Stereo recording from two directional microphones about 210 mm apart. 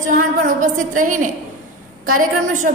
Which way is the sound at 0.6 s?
40° right (ahead or behind).